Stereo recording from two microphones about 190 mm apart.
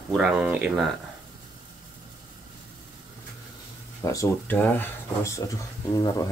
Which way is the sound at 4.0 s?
15° left (ahead or behind).